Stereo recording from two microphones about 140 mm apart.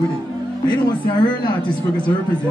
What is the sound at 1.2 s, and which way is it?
Speech, 30° left (ahead or behind).